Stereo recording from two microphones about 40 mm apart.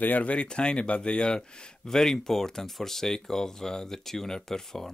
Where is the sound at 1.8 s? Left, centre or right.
Centre.